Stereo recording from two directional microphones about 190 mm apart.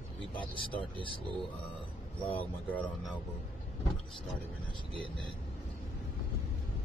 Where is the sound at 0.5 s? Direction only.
25° left (ahead or behind).